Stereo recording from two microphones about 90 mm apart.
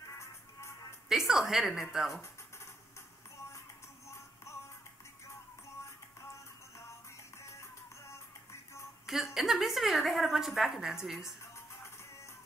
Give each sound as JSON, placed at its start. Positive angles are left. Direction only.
{"t": 0.2, "sound": "music", "side_deg": 30}
{"t": 1.0, "sound": "a woman's voice", "side_deg": -5}
{"t": 9.0, "sound": "a woman's voice", "side_deg": -5}
{"t": 11.1, "sound": "music", "side_deg": 30}